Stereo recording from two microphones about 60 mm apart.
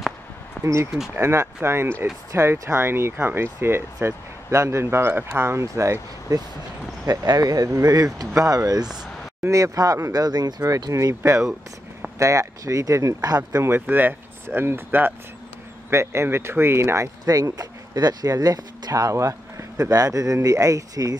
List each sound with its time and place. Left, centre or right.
0.6 s speech: right
6.3 s speech: right
8.4 s speech: right
9.5 s speech: right
10.1 s speech: right
13.7 s speech: right
15.9 s speech: right
17.3 s speech: right
20.4 s speech: right